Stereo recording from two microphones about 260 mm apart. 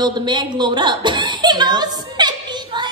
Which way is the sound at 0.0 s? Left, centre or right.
Centre.